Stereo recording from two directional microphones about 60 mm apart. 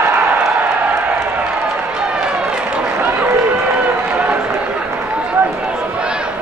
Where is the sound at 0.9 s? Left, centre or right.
Right.